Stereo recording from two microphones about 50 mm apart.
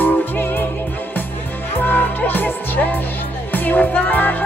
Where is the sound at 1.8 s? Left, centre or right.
Left.